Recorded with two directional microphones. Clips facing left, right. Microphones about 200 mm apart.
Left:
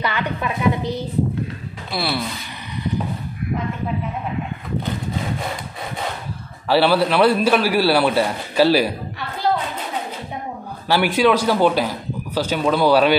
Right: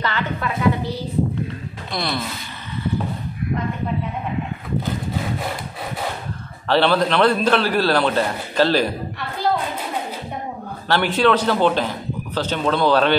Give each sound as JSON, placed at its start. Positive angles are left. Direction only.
{"t": 0.0, "sound": "a man's voice", "side_deg": 15}
{"t": 1.9, "sound": "speech", "side_deg": 5}
{"t": 6.7, "sound": "a man's voice", "side_deg": 10}
{"t": 10.9, "sound": "a man's voice", "side_deg": 10}